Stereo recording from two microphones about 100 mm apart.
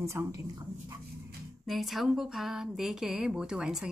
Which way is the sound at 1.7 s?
Centre (ahead or behind).